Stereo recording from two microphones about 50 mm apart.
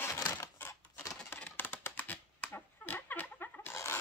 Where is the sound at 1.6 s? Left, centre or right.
Left.